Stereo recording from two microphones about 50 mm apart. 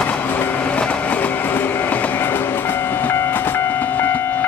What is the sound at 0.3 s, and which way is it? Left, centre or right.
Train, left.